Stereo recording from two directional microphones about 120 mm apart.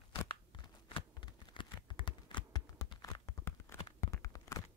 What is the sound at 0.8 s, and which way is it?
Computer keyboard, 45° left (ahead or behind).